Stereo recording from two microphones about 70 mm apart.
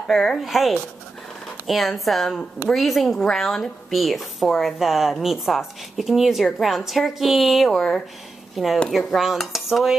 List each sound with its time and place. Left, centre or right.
0.0 s a woman's voice: centre